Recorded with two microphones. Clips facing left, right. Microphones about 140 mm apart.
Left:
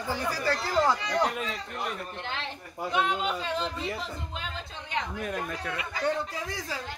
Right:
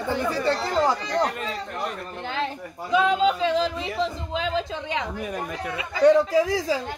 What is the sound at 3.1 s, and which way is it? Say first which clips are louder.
Speech: right 9 dB; 90° right.